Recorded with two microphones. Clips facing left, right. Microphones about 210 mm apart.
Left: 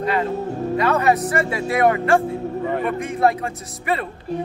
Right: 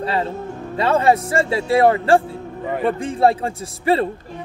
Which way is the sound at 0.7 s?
30° right (ahead or behind).